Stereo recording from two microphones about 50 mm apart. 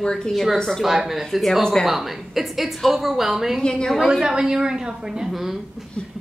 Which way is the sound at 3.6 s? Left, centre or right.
Centre.